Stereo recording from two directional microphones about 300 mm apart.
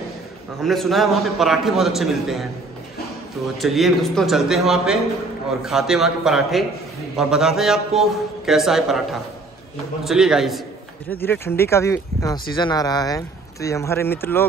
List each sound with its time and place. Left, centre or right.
0.6 s a man's voice: centre
3.5 s a man's voice: centre
10.0 s a man's voice: centre